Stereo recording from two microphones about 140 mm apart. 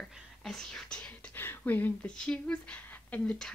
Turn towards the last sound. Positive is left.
turn(degrees=10)  # may be behind; listen again after turning